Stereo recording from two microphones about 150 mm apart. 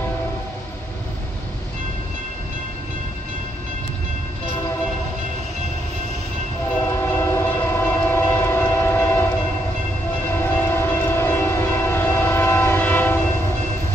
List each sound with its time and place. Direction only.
6.8 s train: 15° left (ahead or behind)
10.4 s train: 15° left (ahead or behind)